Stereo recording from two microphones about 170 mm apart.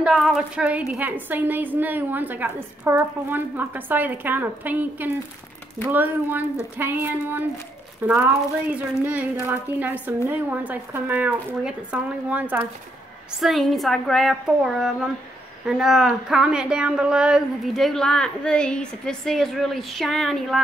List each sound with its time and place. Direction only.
0.0 s a woman's voice: centre (ahead or behind)